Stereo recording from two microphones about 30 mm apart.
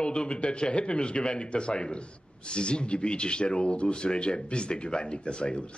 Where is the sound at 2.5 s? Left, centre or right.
Left.